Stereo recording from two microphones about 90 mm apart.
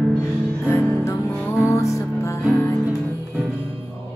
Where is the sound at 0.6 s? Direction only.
30° left (ahead or behind).